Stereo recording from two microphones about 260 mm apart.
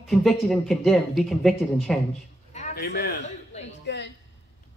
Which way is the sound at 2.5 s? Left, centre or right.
Left.